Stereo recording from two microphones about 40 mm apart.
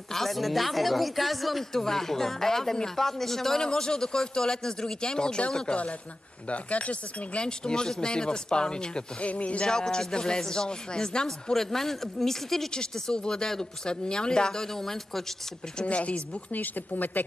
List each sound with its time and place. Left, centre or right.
0.1 s speech: centre
6.5 s speech: left
7.4 s speech: left
9.2 s speech: left
9.7 s speech: centre
11.5 s speech: centre
15.8 s speech: left
16.5 s speech: left